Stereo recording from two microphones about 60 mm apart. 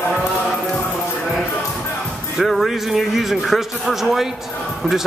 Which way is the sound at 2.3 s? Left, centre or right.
Centre.